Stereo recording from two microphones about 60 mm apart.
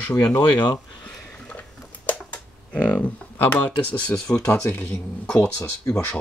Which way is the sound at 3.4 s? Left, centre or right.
Left.